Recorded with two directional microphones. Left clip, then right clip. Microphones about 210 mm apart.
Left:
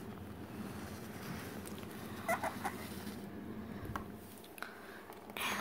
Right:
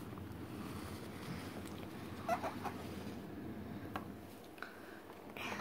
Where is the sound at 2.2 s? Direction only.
30° left (ahead or behind).